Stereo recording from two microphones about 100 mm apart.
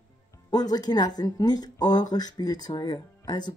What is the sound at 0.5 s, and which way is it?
A woman's voice, 40° left (ahead or behind).